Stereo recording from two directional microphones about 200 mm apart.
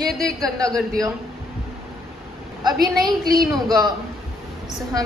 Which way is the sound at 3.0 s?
45° right (ahead or behind).